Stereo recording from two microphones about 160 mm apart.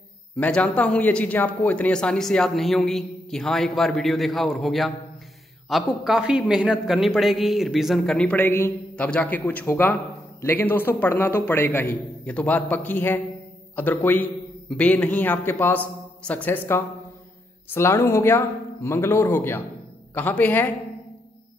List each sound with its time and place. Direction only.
0.4 s a man's voice: 10° left (ahead or behind)